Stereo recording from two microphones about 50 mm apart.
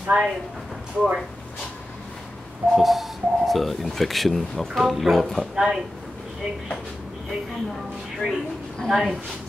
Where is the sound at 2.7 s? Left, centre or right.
Centre.